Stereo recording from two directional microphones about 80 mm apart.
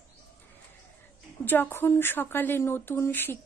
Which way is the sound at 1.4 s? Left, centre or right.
Left.